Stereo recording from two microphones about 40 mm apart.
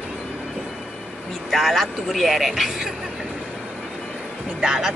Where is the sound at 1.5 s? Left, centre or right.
Centre.